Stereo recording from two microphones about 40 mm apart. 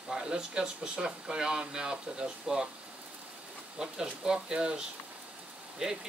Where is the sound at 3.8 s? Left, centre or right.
Centre.